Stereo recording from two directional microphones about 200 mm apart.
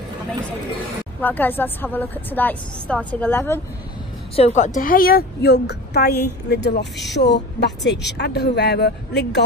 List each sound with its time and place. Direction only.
1.2 s a woman's voice: 10° left (ahead or behind)
4.4 s a woman's voice: 35° left (ahead or behind); by 9.4 s 55° left (ahead or behind)